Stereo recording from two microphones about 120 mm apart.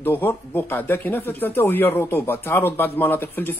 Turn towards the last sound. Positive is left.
turn(degrees=20)  # may be behind; listen again after turning